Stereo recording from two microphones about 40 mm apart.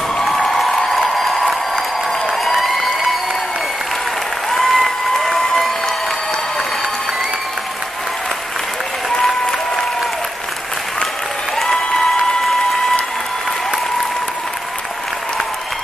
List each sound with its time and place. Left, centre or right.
0.2 s a sound: centre
2.3 s applause: centre
4.5 s applause: centre
9.2 s applause: centre
11.5 s applause: centre